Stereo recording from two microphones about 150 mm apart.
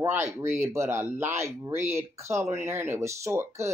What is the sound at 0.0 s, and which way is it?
Speech, 15° right (ahead or behind).